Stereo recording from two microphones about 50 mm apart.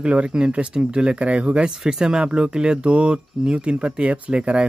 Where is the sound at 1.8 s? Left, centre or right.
Centre.